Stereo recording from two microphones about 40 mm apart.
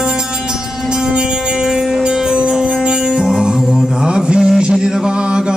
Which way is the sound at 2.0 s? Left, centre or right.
Right.